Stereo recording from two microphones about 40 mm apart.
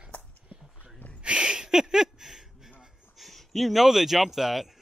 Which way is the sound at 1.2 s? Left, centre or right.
Right.